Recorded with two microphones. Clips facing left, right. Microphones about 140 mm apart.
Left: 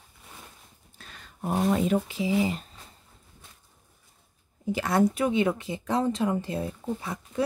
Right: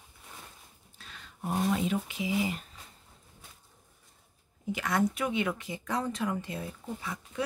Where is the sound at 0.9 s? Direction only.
45° left (ahead or behind); by 2.6 s 30° left (ahead or behind).